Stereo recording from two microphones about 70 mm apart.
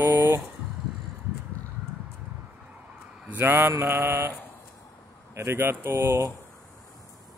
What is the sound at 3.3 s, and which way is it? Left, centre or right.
Speech, right.